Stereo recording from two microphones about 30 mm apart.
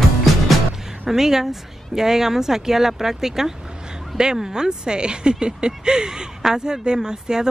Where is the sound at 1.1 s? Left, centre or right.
Centre.